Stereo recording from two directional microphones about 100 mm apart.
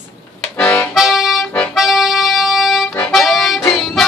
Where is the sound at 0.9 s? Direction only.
5° right (ahead or behind).